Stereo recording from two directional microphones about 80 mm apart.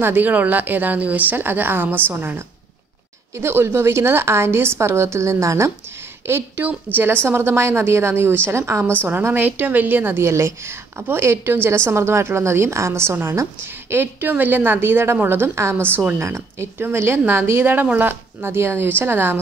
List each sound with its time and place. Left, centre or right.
0.0 s a woman's voice: right
6.2 s a woman's voice: right